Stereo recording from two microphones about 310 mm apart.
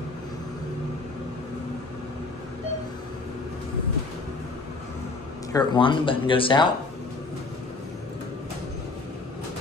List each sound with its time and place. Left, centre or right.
5.5 s speech: centre